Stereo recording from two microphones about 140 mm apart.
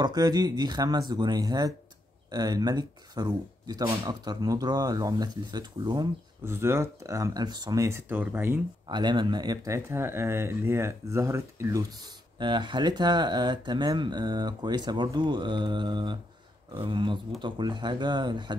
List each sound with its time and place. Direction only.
0.0 s speech: 30° right (ahead or behind)
6.4 s speech: 20° right (ahead or behind)
8.8 s speech: 30° right (ahead or behind)
12.4 s speech: 35° right (ahead or behind)